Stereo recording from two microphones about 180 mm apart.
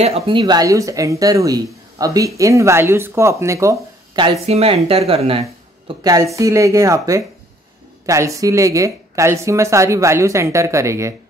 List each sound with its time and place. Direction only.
0.0 s speech: 35° right (ahead or behind)
0.4 s a woman's voice: 20° right (ahead or behind)
4.5 s speech: 35° right (ahead or behind)
5.9 s a woman's voice: 20° right (ahead or behind)